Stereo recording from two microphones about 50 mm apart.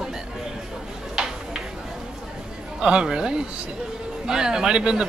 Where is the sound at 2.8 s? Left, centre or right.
Centre.